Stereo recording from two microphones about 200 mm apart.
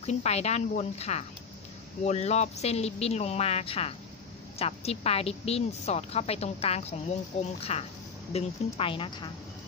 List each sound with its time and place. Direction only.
0.0 s a woman's voice: 35° left (ahead or behind)